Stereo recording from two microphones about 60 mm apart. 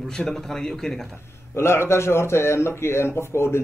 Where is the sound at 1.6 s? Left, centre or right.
Left.